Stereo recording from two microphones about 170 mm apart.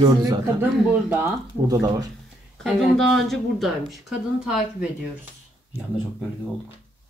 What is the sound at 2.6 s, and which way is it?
Speech, centre (ahead or behind).